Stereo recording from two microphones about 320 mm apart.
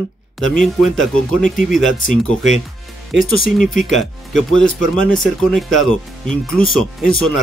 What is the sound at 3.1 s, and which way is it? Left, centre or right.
Speech, left.